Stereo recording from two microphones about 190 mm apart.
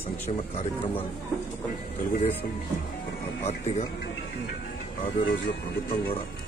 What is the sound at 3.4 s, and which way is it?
Speech, 35° left (ahead or behind).